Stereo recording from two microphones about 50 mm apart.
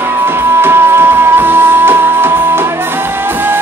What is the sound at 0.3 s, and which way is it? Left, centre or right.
Music, right.